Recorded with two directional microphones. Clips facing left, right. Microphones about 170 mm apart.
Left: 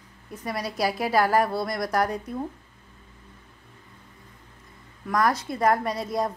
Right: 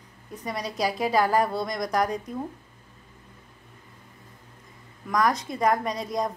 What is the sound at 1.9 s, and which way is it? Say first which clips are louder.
Speech: even; 5° left (ahead or behind).